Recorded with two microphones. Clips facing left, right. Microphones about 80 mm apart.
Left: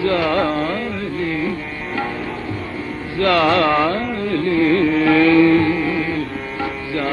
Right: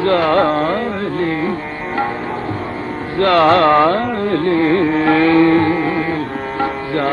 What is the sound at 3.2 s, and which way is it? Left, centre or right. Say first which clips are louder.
Carnatic music: right 4 dB; right.